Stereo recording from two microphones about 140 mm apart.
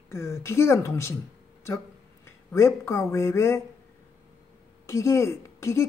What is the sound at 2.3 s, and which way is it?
Speech, 20° left (ahead or behind).